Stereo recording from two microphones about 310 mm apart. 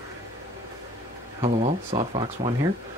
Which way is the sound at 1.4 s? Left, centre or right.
Centre.